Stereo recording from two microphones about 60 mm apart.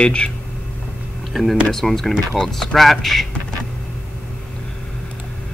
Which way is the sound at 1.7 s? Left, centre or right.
Centre.